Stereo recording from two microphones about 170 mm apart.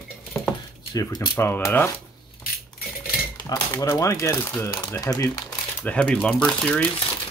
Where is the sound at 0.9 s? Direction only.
20° left (ahead or behind).